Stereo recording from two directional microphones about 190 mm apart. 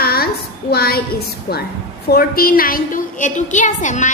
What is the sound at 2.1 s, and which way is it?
A woman's voice, 50° left (ahead or behind).